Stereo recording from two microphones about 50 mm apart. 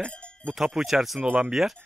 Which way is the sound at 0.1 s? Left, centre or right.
Left.